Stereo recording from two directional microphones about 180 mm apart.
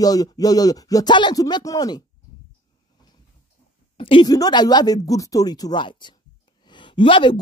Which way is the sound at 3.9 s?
25° left (ahead or behind).